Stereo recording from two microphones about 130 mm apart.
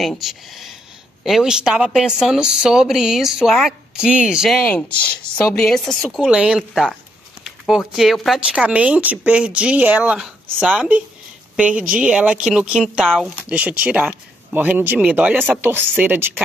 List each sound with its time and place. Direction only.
0.0 s speech: centre (ahead or behind)
4.6 s speech: 10° left (ahead or behind); by 16.3 s 15° right (ahead or behind)